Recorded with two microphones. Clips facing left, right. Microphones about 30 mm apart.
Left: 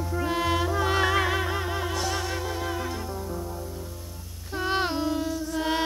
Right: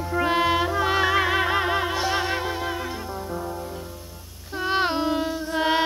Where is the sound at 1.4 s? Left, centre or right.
Right.